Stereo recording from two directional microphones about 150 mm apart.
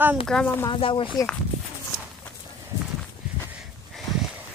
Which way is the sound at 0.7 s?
35° left (ahead or behind).